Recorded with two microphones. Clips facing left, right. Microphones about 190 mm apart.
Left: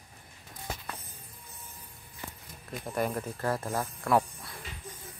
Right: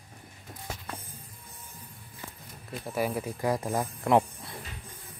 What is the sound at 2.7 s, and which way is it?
Speech, 5° right (ahead or behind).